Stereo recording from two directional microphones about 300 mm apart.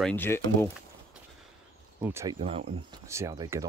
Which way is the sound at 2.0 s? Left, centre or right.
Centre.